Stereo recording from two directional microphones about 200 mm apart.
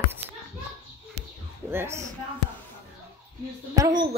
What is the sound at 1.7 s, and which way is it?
Speech, 10° right (ahead or behind).